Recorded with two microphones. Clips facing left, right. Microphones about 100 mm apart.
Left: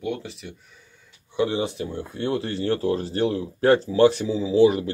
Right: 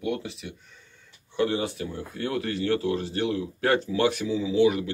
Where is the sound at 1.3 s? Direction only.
15° left (ahead or behind); by 4.8 s 35° left (ahead or behind).